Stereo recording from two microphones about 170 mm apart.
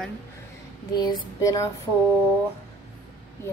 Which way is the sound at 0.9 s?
25° left (ahead or behind).